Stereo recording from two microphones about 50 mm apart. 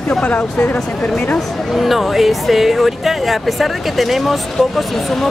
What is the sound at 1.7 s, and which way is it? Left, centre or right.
Speech, centre.